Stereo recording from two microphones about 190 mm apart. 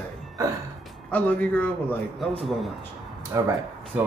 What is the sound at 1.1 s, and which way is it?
A man's voice, 10° left (ahead or behind).